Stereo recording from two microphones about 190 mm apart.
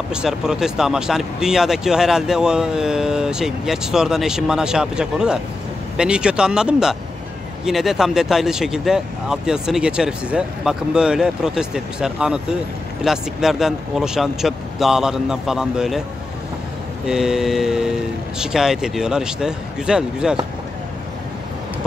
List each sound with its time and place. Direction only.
0.1 s speech: 5° right (ahead or behind)
17.0 s speech: 5° right (ahead or behind)